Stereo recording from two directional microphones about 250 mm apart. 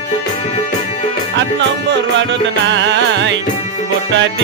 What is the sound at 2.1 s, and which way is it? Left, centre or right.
Music, right.